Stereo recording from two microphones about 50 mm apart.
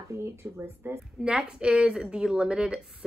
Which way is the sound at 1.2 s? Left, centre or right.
Centre.